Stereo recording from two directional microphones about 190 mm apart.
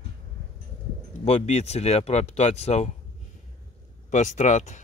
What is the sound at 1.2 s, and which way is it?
Speech, 35° left (ahead or behind).